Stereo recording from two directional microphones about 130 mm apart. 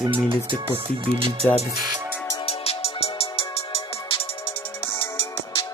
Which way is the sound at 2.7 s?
50° left (ahead or behind).